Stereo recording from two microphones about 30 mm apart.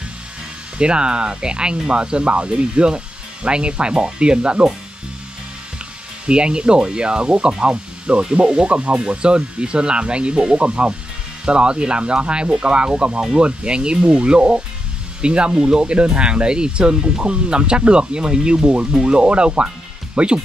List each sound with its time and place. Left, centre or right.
0.7 s speech: right
6.2 s speech: right